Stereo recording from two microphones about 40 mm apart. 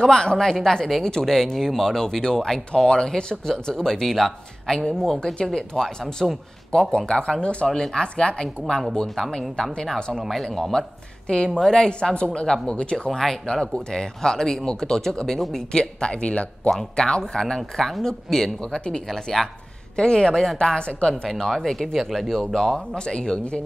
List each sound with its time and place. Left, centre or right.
0.0 s speech: centre
7.6 s speech: centre
11.7 s speech: left
13.2 s speech: centre
15.7 s speech: left
17.6 s speech: centre
20.0 s speech: left
21.4 s speech: centre
22.4 s speech: centre
22.9 s speech: left